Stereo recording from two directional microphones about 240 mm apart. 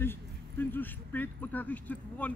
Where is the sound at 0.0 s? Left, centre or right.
Centre.